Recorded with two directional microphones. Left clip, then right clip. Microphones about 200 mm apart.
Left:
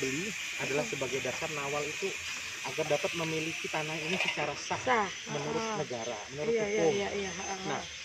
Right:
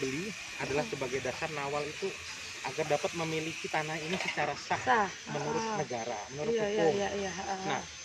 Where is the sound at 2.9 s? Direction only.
15° left (ahead or behind).